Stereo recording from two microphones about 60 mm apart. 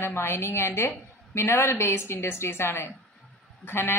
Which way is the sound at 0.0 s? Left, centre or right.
Left.